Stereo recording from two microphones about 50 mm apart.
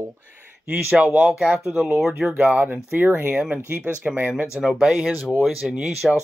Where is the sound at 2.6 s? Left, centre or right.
Right.